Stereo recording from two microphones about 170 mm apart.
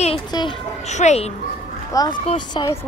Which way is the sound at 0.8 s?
40° left (ahead or behind).